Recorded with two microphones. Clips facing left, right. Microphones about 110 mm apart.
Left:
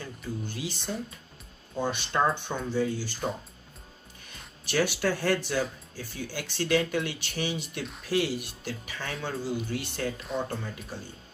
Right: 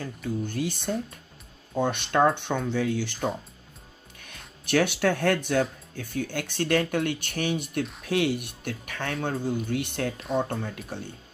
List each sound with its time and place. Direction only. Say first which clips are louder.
0.2 s speech: right 7 dB; 50° right (ahead or behind)
4.6 s speech: right 4 dB; 60° right (ahead or behind)